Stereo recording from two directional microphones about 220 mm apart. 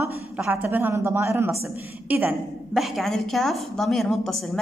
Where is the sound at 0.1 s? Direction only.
10° right (ahead or behind).